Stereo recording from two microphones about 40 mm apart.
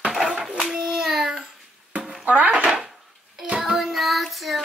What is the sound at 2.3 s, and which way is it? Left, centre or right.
Speech, right.